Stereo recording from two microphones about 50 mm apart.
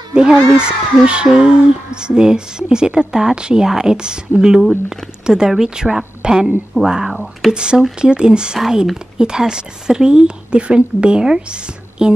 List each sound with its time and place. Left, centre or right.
0.1 s speech: centre